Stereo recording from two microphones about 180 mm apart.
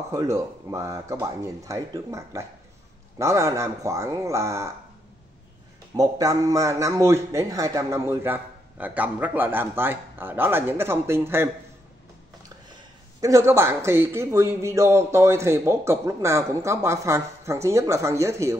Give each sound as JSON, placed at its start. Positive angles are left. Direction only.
{"t": 0.1, "sound": "a man's voice", "side_deg": -15}
{"t": 5.9, "sound": "a man's voice", "side_deg": -20}
{"t": 13.2, "sound": "a man's voice", "side_deg": -15}